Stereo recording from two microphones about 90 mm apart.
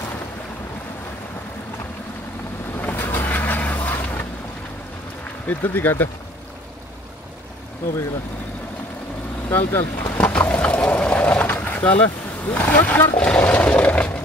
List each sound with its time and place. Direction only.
2.8 s vehicle: 20° left (ahead or behind)
5.5 s speech: 20° left (ahead or behind)
9.5 s speech: 25° left (ahead or behind)
10.1 s a sound: 20° left (ahead or behind)